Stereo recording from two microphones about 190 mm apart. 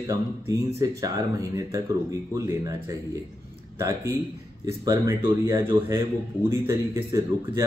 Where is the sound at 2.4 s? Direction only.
15° right (ahead or behind).